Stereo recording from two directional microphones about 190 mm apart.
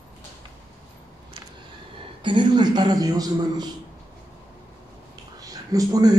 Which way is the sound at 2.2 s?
25° right (ahead or behind).